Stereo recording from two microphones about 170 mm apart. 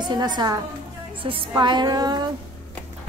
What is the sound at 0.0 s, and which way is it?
A woman's voice, 25° right (ahead or behind).